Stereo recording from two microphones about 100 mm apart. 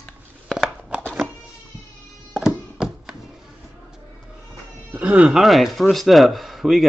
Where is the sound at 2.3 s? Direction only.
5° right (ahead or behind).